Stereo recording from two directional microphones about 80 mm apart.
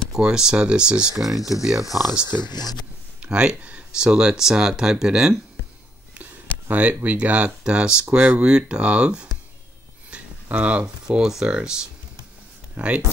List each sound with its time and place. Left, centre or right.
0.1 s speech: centre
2.3 s speech: left
3.2 s speech: centre
6.7 s speech: centre